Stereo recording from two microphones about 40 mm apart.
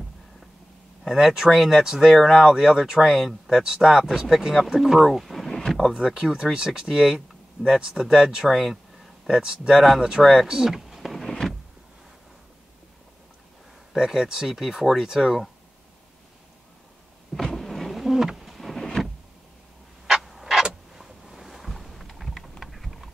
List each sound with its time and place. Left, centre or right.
1.0 s speech: centre
2.1 s speech: centre
2.4 s speech: centre
5.9 s speech: centre
8.5 s a sound: centre
9.3 s speech: centre
11.0 s power windows: centre
13.9 s speech: centre
17.3 s a sound: centre
18.8 s power windows: centre
20.1 s a sound: centre
22.6 s typing: centre